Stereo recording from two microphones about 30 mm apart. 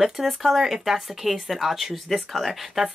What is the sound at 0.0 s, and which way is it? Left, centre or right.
Speech, centre.